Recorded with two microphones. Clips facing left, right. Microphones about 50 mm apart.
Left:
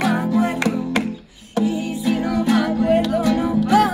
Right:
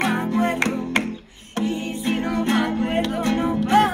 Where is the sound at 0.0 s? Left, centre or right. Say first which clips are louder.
Left 2 dB; right.